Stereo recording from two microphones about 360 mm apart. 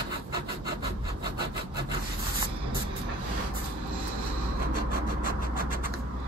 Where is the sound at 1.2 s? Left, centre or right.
Centre.